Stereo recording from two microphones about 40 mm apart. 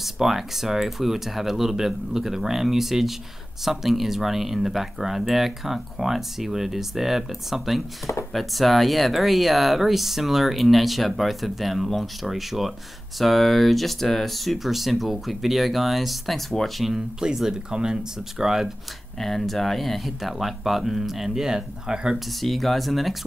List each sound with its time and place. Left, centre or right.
0.0 s speech: centre
16.9 s speech: centre
19.1 s speech: centre
22.1 s speech: centre